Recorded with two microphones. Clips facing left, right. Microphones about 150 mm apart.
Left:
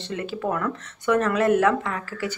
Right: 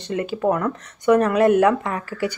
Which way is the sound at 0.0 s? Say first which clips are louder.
Right 6 dB; 15° right (ahead or behind).